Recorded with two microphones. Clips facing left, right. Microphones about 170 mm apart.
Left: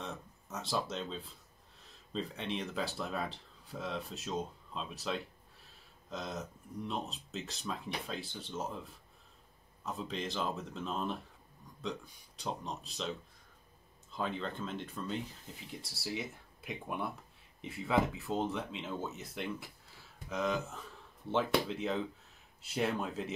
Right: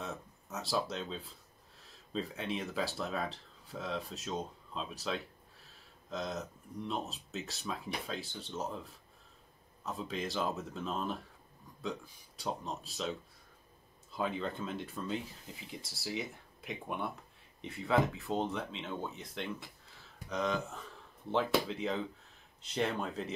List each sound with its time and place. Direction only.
0.0 s a sound: centre (ahead or behind)
1.8 s speech: centre (ahead or behind)
9.8 s speech: centre (ahead or behind)
12.4 s speech: centre (ahead or behind)
14.1 s speech: 5° right (ahead or behind)